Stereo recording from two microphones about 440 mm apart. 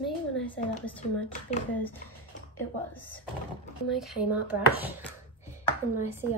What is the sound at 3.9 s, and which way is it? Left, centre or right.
Speech, centre.